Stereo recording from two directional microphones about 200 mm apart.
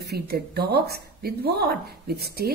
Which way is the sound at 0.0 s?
50° right (ahead or behind).